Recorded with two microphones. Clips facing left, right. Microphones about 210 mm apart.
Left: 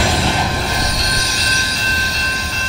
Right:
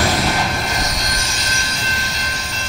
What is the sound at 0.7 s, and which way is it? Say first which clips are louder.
Vehicle: left 2 dB; 35° left (ahead or behind).